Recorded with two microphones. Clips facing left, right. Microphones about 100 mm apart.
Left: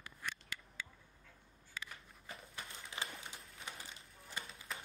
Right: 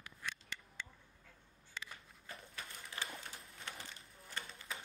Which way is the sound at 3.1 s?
10° left (ahead or behind).